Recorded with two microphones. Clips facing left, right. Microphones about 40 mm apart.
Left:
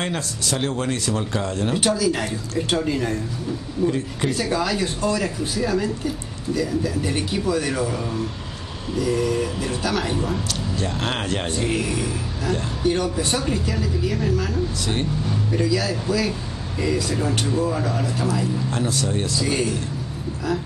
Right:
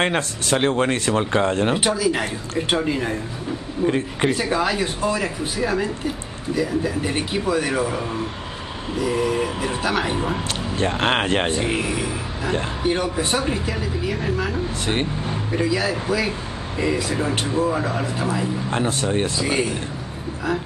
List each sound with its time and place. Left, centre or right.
0.0 s speech: right
1.8 s speech: centre
3.8 s speech: right
4.4 s speech: right